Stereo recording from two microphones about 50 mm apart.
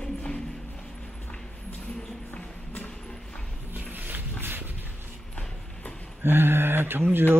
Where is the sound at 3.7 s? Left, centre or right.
Right.